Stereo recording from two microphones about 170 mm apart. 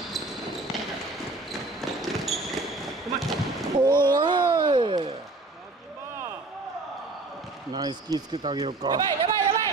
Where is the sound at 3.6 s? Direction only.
25° right (ahead or behind).